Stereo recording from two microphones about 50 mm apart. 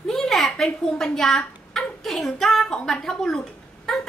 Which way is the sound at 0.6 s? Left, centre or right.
Centre.